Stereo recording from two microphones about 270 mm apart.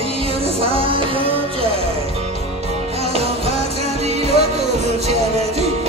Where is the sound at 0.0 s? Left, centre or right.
Right.